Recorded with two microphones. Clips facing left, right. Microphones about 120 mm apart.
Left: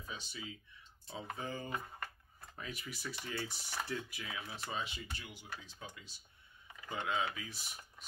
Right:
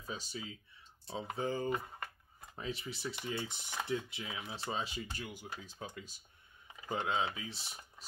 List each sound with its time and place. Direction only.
0.0 s speech: 35° right (ahead or behind)
6.9 s speech: 25° right (ahead or behind)